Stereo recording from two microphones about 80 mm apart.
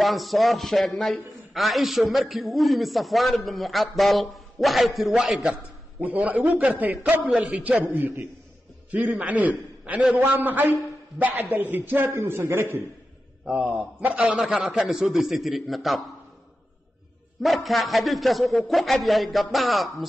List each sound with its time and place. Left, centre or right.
0.0 s a man's voice: centre
6.0 s a man's voice: centre
13.5 s a man's voice: centre
17.4 s a man's voice: centre